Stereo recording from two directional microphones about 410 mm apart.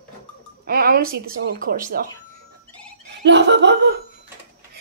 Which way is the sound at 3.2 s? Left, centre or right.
Right.